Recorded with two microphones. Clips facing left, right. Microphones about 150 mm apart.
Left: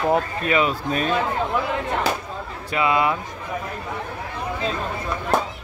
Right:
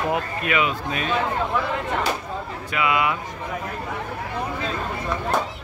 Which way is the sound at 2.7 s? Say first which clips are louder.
Left 2 dB; 30° left (ahead or behind).